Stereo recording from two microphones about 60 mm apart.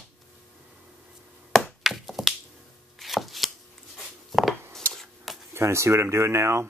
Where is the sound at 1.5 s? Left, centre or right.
Centre.